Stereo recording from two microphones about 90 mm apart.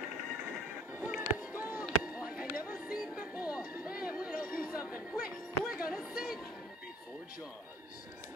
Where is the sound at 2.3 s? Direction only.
10° right (ahead or behind).